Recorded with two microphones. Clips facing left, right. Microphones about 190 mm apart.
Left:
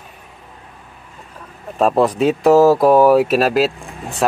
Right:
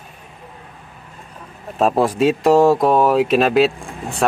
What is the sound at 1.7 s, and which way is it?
Speech, centre (ahead or behind).